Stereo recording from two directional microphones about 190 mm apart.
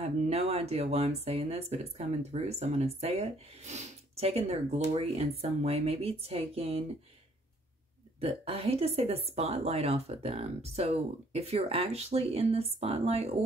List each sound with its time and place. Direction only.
0.0 s speech: 35° right (ahead or behind)
8.2 s speech: 30° right (ahead or behind)